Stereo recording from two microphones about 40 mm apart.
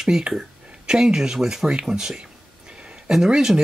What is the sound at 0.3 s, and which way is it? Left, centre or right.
Speech, centre.